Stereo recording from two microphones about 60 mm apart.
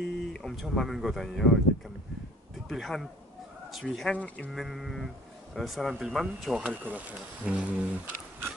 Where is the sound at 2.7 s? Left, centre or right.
Centre.